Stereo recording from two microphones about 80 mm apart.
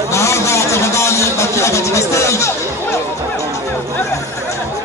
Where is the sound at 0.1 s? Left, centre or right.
Left.